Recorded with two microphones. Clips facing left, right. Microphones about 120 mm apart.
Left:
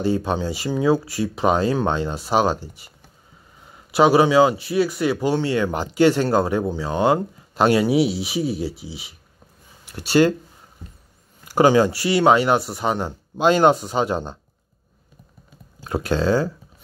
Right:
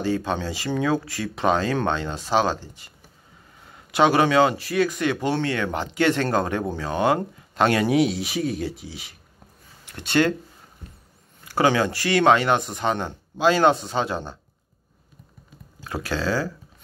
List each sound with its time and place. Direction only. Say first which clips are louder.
0.0 s speech: left 3 dB; 15° left (ahead or behind)
3.9 s speech: left 3 dB; 5° left (ahead or behind)
6.9 s speech: left 2 dB; 30° left (ahead or behind)
7.2 s speech: left 2 dB; 10° left (ahead or behind)
9.8 s speech: left 4 dB; 10° left (ahead or behind)
11.4 s a sound: left 4 dB; 15° left (ahead or behind)
12.0 s speech: left 2 dB; 10° left (ahead or behind)
15.9 s speech: left 6 dB; 20° left (ahead or behind)